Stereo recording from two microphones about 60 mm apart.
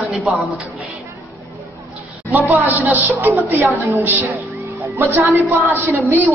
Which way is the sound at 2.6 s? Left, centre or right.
Right.